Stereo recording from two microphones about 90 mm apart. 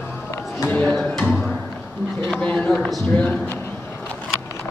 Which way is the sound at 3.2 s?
20° left (ahead or behind).